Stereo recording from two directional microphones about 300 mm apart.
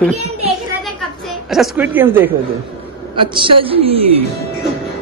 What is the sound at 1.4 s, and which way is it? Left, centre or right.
A woman's voice, centre.